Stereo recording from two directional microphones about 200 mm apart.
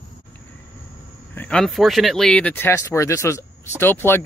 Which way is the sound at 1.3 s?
5° left (ahead or behind).